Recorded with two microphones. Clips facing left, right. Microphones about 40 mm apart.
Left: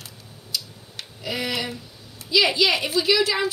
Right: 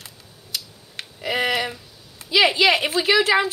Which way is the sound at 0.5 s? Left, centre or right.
Right.